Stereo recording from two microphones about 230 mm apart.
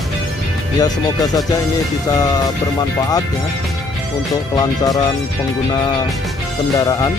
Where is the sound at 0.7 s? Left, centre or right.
Centre.